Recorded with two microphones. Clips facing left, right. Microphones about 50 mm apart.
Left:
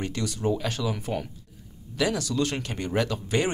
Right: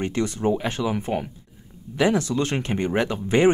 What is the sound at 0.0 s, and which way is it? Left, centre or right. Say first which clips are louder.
Speech: right 5 dB; right.